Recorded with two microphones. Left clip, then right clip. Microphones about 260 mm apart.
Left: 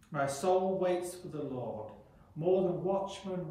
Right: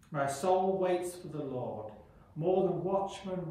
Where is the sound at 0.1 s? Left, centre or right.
Centre.